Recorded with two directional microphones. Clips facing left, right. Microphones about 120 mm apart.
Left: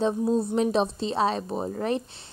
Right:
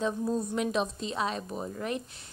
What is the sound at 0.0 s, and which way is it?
Speech, 30° left (ahead or behind).